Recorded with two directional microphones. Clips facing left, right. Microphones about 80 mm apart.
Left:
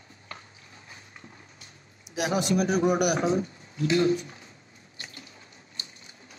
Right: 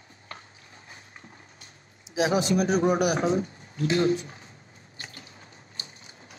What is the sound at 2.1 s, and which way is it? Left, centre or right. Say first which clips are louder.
A man's voice: right 2 dB; right.